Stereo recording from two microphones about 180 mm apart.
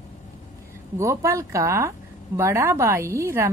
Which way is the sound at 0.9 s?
15° right (ahead or behind).